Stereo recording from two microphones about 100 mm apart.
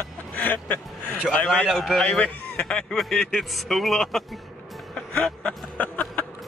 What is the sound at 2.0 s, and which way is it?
A man's voice, 10° left (ahead or behind).